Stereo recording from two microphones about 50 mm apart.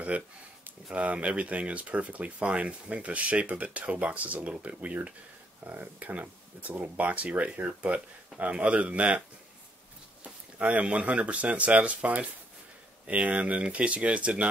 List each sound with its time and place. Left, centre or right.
0.1 s speech: right
10.2 s speech: right